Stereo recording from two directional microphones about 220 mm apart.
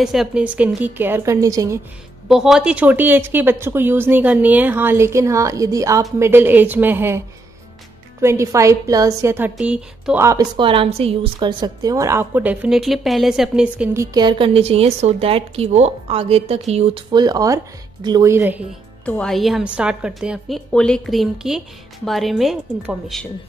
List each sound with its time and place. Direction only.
0.0 s a woman's voice: centre (ahead or behind)
2.2 s a woman's voice: centre (ahead or behind)
8.2 s a woman's voice: 10° right (ahead or behind)
14.1 s a woman's voice: 20° right (ahead or behind)
19.0 s a woman's voice: 5° left (ahead or behind)